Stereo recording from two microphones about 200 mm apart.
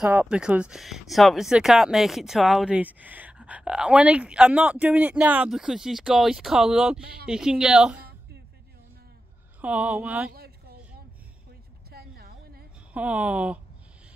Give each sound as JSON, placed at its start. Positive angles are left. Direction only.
{"t": 0.0, "sound": "speech", "side_deg": -5}
{"t": 7.0, "sound": "speech", "side_deg": -50}
{"t": 7.2, "sound": "speech", "side_deg": -5}
{"t": 9.6, "sound": "speech", "side_deg": -5}
{"t": 10.3, "sound": "a sound", "side_deg": -50}
{"t": 11.9, "sound": "a sound", "side_deg": -50}
{"t": 12.9, "sound": "speech", "side_deg": -5}